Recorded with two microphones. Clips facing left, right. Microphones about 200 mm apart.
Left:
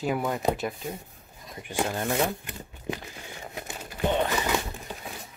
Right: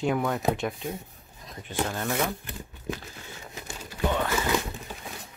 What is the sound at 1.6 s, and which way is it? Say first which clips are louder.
Speech: left 1 dB; 10° left (ahead or behind).